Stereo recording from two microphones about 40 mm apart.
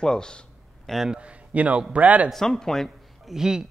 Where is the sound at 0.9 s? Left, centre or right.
Centre.